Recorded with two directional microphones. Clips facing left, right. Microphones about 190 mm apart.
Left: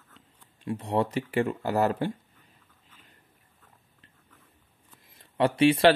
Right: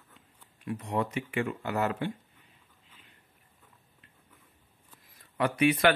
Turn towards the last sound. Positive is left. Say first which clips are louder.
# left 4 dB
turn(degrees=30)  # may be behind; listen again after turning